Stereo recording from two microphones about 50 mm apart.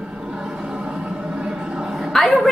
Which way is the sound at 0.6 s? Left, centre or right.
Centre.